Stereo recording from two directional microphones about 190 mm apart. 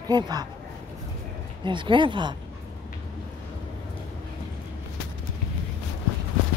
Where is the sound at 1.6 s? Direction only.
25° right (ahead or behind).